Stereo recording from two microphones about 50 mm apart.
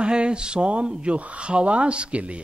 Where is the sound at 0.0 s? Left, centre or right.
Centre.